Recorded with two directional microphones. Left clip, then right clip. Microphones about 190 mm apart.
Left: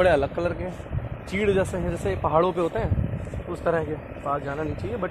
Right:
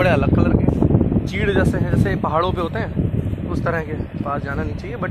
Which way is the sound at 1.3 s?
25° right (ahead or behind).